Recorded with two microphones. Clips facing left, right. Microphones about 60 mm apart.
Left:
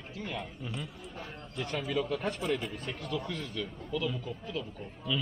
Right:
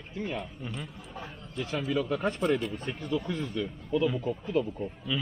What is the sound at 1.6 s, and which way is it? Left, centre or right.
Speech, centre.